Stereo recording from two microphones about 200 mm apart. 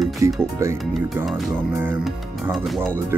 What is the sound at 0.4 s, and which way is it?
Speech, 15° right (ahead or behind).